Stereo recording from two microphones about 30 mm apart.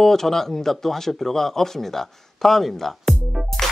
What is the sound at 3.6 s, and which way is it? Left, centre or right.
Music, centre.